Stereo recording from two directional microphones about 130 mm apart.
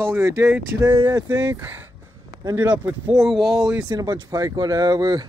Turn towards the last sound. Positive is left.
turn(degrees=-30)  # may be behind; listen again after turning